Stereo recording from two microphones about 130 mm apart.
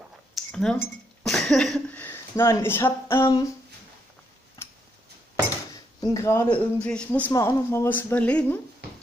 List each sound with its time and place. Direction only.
0.3 s chink: 5° left (ahead or behind)
1.2 s speech: 5° left (ahead or behind); by 3.3 s 20° left (ahead or behind)
5.9 s speech: 25° left (ahead or behind)
6.5 s speech: 10° left (ahead or behind)